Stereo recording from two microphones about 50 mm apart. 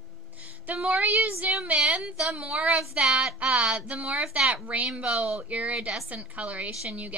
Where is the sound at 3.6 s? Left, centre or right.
Centre.